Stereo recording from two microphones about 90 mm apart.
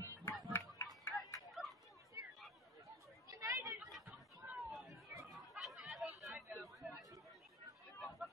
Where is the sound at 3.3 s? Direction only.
35° right (ahead or behind).